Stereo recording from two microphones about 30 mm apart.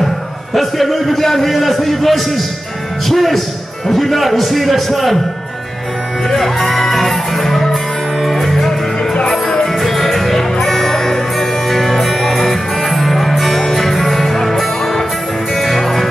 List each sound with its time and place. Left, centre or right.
0.6 s a man's voice: centre
6.3 s music: centre
9.2 s music: left
9.8 s music: centre